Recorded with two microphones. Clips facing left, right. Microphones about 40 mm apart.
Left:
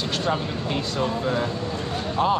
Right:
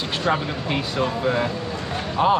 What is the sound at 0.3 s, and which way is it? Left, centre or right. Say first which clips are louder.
Speech: right 5 dB; right.